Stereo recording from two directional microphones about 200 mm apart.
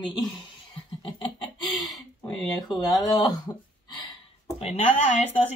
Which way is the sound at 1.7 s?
Centre (ahead or behind).